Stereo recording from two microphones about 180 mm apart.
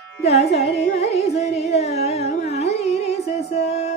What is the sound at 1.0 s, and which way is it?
Carnatic music, 35° left (ahead or behind).